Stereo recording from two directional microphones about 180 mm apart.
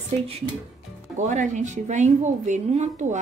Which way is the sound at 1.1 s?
45° right (ahead or behind).